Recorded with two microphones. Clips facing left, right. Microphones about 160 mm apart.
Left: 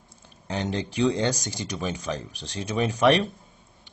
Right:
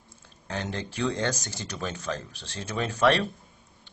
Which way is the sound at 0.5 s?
20° left (ahead or behind).